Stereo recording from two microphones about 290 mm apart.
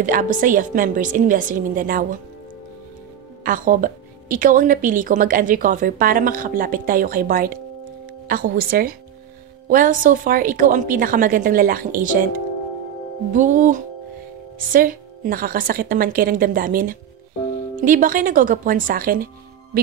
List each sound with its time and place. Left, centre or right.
0.0 s a woman's voice: right
3.4 s a woman's voice: right